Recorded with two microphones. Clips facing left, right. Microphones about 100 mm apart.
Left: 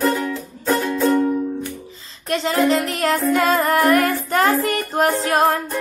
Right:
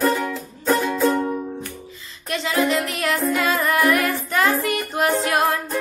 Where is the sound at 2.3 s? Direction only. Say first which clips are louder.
Left 3 dB; 35° left (ahead or behind).